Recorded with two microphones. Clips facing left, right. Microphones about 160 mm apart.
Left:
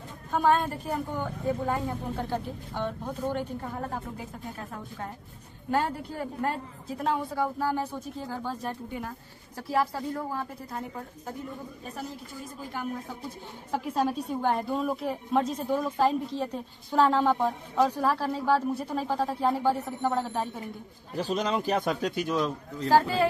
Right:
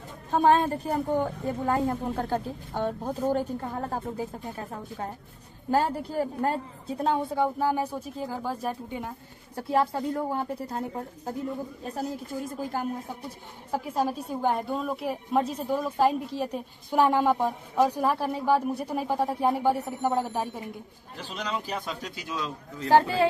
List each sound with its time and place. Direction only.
0.3 s a woman's voice: 35° right (ahead or behind)
1.7 s speech: 50° right (ahead or behind)
4.6 s a woman's voice: 25° right (ahead or behind)
9.6 s a woman's voice: 25° right (ahead or behind)
12.7 s a woman's voice: 40° right (ahead or behind)
13.7 s a woman's voice: 10° right (ahead or behind)
21.2 s a man's voice: 45° left (ahead or behind); by 22.4 s 60° left (ahead or behind)
22.8 s a woman's voice: 20° right (ahead or behind)